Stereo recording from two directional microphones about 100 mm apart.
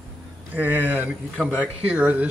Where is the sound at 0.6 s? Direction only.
15° right (ahead or behind).